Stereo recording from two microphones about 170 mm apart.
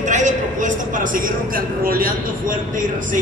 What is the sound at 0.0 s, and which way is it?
A man's voice, 45° right (ahead or behind).